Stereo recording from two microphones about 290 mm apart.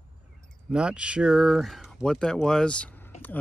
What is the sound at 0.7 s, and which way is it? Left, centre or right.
Speech, centre.